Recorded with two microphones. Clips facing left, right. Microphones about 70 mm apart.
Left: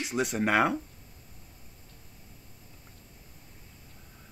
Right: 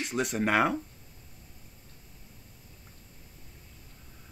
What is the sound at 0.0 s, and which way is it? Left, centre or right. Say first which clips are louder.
Speech: left 1 dB; centre.